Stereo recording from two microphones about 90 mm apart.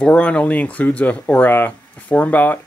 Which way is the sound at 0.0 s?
15° left (ahead or behind).